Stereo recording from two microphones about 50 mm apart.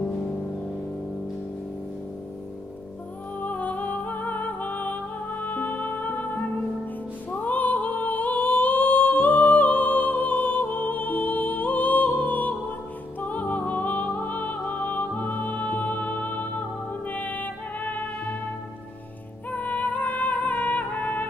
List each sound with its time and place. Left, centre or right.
3.3 s music: left
7.2 s female singing: left
13.2 s music: left
19.5 s music: left